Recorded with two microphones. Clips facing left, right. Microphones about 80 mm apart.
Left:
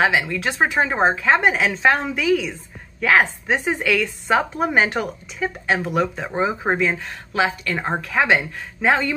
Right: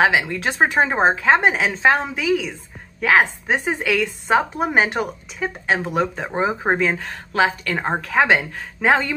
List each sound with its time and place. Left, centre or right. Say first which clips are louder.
0.0 s a woman's voice: right 1 dB; right
5.7 s a woman's voice: even; right